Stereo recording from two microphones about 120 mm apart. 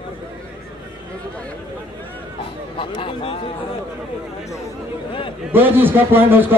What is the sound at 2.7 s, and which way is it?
Speech, 45° left (ahead or behind).